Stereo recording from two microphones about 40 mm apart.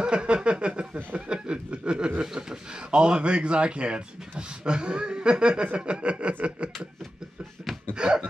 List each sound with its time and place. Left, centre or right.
0.0 s speech: right
2.2 s speech: centre
7.9 s speech: right